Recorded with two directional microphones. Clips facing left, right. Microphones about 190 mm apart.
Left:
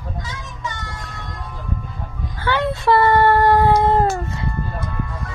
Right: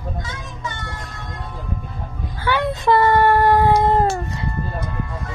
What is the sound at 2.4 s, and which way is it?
Howl, 15° right (ahead or behind).